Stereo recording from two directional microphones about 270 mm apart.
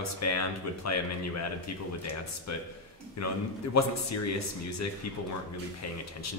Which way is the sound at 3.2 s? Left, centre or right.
Left.